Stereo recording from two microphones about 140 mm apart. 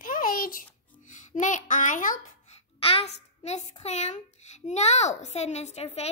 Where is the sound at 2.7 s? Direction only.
45° left (ahead or behind).